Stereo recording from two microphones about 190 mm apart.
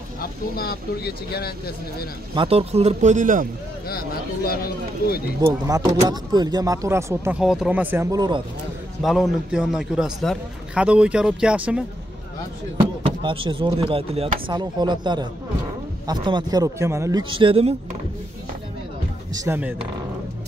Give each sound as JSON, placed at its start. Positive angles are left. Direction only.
{"t": 0.2, "sound": "speech", "side_deg": 55}
{"t": 2.3, "sound": "a man's voice", "side_deg": -30}
{"t": 3.8, "sound": "speech", "side_deg": 55}
{"t": 5.4, "sound": "speech", "side_deg": -20}
{"t": 9.0, "sound": "a man's voice", "side_deg": 0}
{"t": 13.0, "sound": "speech", "side_deg": -30}
{"t": 17.2, "sound": "speech", "side_deg": -25}
{"t": 19.3, "sound": "speech", "side_deg": -15}